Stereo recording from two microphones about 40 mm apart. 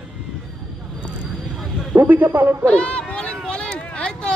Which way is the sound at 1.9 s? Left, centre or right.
Right.